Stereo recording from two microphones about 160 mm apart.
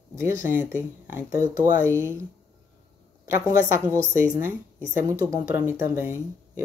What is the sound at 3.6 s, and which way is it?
Speech, 15° right (ahead or behind).